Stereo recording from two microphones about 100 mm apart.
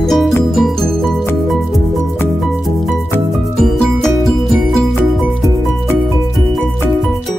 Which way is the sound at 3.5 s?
5° left (ahead or behind).